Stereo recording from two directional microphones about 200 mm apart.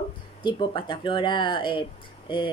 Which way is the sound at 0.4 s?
25° left (ahead or behind).